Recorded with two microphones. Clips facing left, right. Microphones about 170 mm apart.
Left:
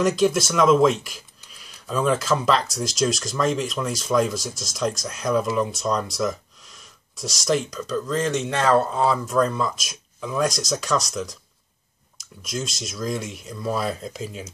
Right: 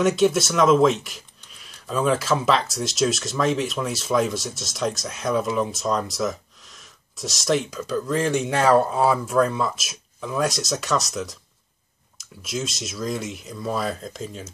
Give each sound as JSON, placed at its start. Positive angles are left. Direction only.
{"t": 0.0, "sound": "speech", "side_deg": 0}